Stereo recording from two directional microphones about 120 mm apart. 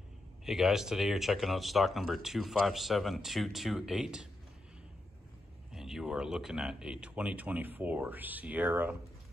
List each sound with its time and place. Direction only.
0.5 s speech: 5° right (ahead or behind)
5.7 s speech: 5° right (ahead or behind)